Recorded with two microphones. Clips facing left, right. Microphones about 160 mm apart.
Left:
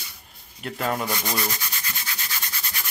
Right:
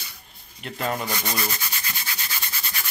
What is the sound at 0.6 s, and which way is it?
Sanding, 5° left (ahead or behind).